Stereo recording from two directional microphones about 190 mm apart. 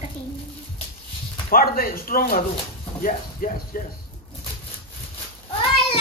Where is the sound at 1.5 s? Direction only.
50° left (ahead or behind).